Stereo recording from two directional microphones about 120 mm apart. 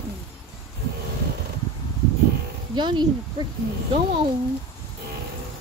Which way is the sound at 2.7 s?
40° right (ahead or behind).